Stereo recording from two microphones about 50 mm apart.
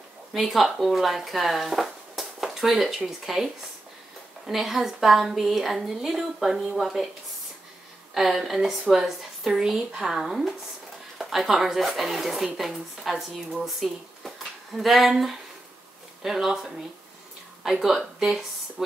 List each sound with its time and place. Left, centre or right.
0.3 s a woman's voice: centre
4.5 s a woman's voice: centre
8.1 s a woman's voice: centre